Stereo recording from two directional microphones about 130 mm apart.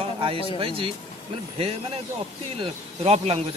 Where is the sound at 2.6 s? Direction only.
50° right (ahead or behind).